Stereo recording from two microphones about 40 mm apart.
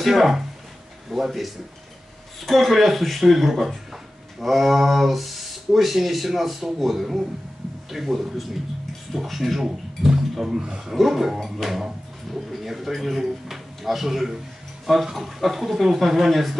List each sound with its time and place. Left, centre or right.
0.0 s speech: centre